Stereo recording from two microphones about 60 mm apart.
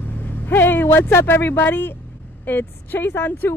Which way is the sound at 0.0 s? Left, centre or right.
Left.